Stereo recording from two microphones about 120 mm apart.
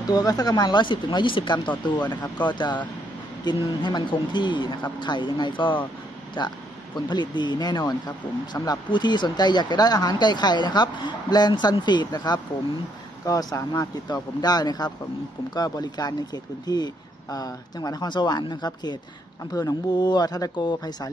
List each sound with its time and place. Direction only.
0.0 s speech: 35° left (ahead or behind)
8.9 s speech: 40° left (ahead or behind)